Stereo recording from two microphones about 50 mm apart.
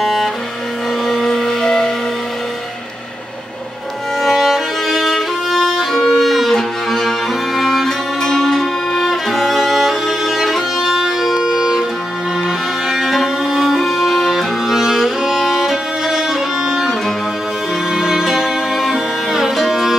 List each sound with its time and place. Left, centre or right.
0.0 s music: centre
4.2 s violin: centre
12.4 s music: centre
17.9 s music: centre